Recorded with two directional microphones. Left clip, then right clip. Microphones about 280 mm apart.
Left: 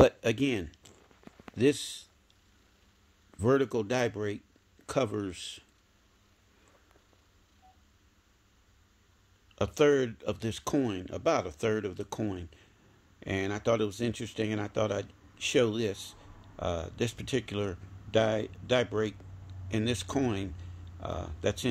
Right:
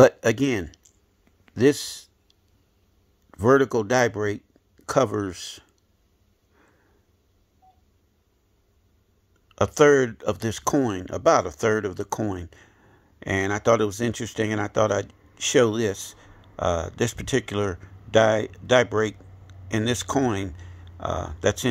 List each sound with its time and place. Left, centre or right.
0.2 s speech: centre
3.3 s speech: centre
9.6 s speech: centre